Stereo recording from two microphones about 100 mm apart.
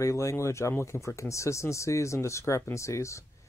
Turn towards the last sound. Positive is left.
turn(degrees=30)  # may be behind; listen again after turning